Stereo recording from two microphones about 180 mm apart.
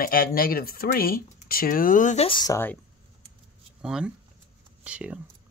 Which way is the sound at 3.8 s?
5° right (ahead or behind).